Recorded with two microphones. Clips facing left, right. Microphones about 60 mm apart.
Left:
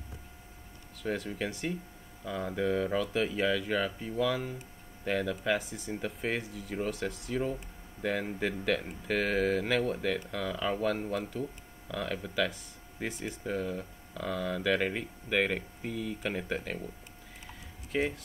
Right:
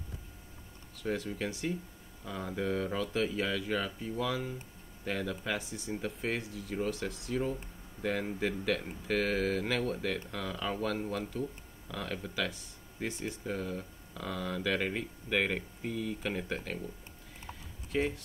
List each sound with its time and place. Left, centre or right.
1.0 s speech: centre